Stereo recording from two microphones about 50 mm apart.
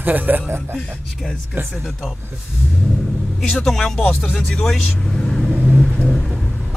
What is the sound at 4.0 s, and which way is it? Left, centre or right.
Speech, left.